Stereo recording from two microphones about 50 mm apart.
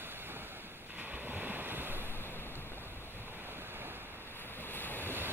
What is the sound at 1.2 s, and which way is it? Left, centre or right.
Waves, right.